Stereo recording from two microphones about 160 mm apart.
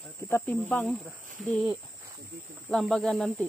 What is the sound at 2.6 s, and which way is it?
Speech, 5° left (ahead or behind).